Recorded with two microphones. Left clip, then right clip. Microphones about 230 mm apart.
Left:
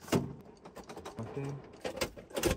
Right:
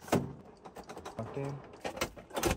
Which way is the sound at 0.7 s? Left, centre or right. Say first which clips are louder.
Right 1 dB; centre.